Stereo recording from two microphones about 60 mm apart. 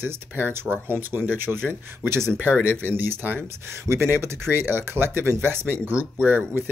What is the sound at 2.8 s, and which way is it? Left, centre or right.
Speech, right.